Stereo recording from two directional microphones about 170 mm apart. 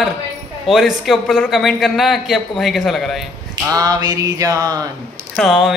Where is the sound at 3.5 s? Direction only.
20° right (ahead or behind).